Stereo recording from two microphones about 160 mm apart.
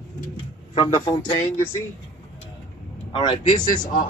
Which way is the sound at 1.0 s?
25° left (ahead or behind).